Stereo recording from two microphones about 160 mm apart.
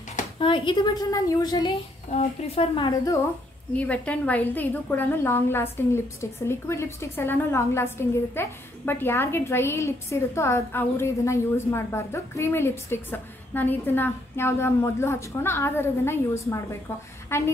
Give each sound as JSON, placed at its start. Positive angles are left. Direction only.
{"t": 0.4, "sound": "a woman's voice", "side_deg": 30}
{"t": 2.0, "sound": "speech", "side_deg": 40}
{"t": 3.7, "sound": "a woman's voice", "side_deg": 10}